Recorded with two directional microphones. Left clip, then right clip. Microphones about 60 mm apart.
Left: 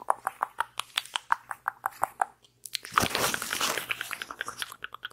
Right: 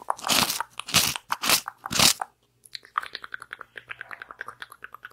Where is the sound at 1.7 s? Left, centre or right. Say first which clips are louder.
Right 9 dB; left.